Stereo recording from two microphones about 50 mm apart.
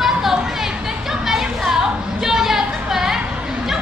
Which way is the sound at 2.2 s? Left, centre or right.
Centre.